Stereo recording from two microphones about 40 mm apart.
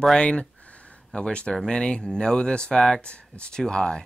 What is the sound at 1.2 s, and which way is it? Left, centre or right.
Speech, left.